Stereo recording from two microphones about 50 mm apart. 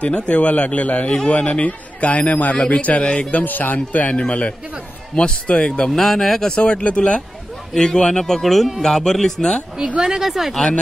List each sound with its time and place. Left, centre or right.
0.0 s a man's voice: left
2.5 s a man's voice: centre
5.9 s speech: centre
6.5 s a man's voice: left
7.7 s speech: centre
9.9 s a woman's voice: centre